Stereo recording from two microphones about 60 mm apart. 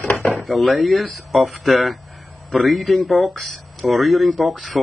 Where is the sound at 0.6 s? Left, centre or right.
Centre.